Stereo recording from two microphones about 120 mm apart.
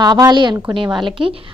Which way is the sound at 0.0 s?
35° right (ahead or behind).